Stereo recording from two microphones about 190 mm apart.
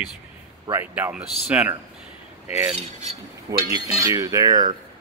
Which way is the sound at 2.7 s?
35° right (ahead or behind).